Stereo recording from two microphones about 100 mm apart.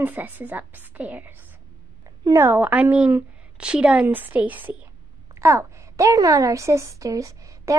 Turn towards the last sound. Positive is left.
turn(degrees=-35)  # may be behind; listen again after turning